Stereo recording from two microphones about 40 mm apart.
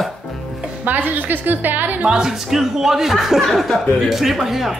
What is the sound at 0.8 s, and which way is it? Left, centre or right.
A woman's voice, right.